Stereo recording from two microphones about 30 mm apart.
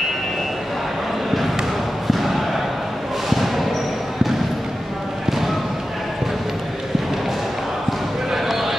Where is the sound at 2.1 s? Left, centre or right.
Centre.